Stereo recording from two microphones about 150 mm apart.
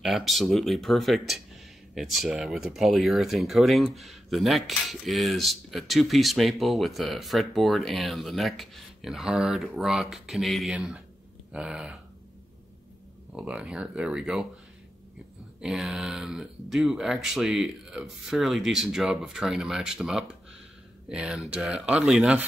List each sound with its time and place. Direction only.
0.0 s speech: centre (ahead or behind)
13.3 s speech: 5° right (ahead or behind)
15.6 s speech: centre (ahead or behind)